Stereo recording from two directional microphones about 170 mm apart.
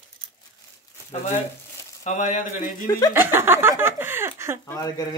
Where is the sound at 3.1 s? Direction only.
15° right (ahead or behind).